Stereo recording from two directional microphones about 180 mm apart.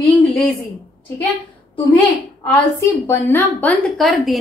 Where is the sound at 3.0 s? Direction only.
15° left (ahead or behind).